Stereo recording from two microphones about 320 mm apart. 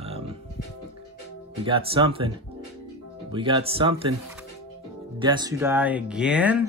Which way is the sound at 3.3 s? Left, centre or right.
Centre.